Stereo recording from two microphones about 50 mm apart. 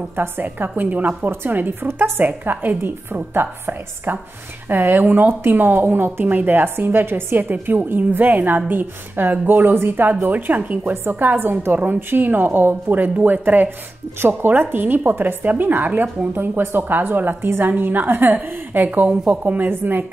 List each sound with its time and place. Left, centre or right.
0.1 s a woman's voice: right
1.3 s speech: right
1.9 s a woman's voice: right
2.1 s a woman's voice: right